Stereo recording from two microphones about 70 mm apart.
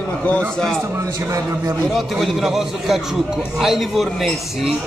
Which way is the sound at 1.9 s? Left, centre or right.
Centre.